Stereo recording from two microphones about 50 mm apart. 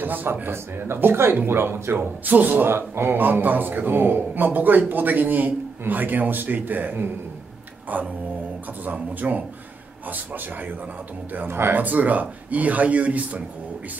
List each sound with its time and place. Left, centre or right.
0.0 s speech: right
2.6 s a man's voice: right
11.4 s speech: right
11.8 s a man's voice: right